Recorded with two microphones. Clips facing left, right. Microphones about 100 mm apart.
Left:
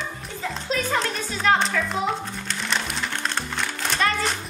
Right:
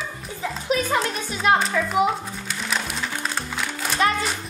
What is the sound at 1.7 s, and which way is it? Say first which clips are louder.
Speech: right 2 dB; 15° right (ahead or behind).